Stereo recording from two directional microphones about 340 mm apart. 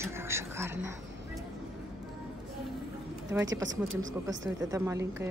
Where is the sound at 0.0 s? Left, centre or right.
Centre.